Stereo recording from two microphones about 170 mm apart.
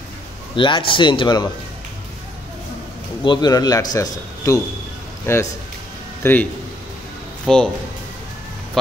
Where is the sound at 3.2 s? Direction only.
25° left (ahead or behind).